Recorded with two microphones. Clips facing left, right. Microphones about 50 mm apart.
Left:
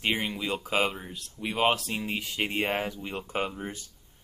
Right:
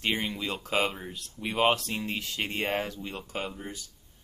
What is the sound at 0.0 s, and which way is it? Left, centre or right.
Speech, centre.